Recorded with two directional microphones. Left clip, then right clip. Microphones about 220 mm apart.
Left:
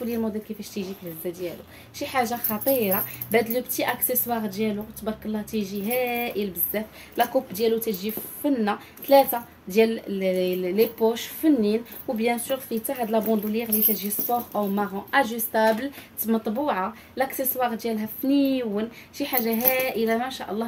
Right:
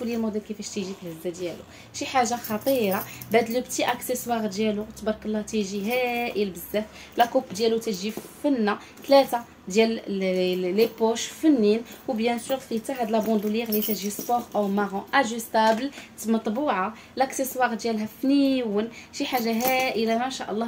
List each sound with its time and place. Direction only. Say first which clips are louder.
0.0 s a woman's voice: even; centre (ahead or behind)